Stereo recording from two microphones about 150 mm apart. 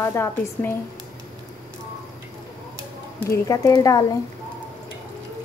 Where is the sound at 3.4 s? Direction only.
25° left (ahead or behind).